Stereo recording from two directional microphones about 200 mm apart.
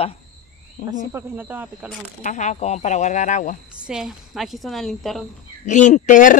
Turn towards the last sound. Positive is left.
turn(degrees=40)  # may be behind; listen again after turning